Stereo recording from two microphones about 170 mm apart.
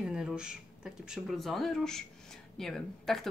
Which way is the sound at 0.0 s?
5° right (ahead or behind).